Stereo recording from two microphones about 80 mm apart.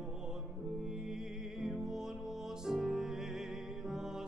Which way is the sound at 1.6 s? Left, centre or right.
Centre.